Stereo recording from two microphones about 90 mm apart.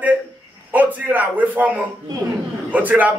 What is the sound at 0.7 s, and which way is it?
Speech, 20° right (ahead or behind).